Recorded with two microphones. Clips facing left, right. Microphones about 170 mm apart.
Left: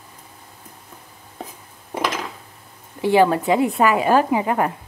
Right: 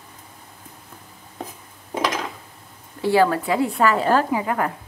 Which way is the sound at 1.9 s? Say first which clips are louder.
Right 1 dB; 5° left (ahead or behind).